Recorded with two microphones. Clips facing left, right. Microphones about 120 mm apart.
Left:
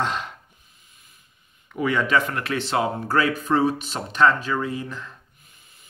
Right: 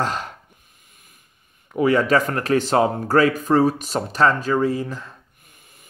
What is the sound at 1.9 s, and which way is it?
Speech, 40° right (ahead or behind).